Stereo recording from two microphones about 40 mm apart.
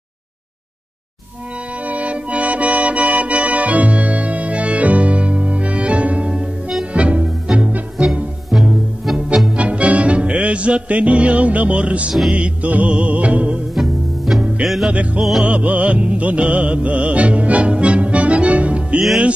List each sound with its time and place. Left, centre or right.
1.9 s music: right
7.5 s music: centre
9.6 s music: right
13.7 s music: centre
15.4 s music: right